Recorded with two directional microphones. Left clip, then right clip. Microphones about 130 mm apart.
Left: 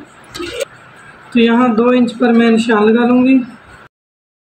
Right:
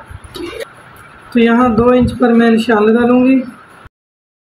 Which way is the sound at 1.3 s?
15° left (ahead or behind).